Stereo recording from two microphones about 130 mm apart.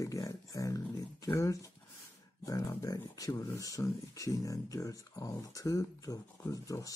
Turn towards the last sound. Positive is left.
turn(degrees=25)  # may be behind; listen again after turning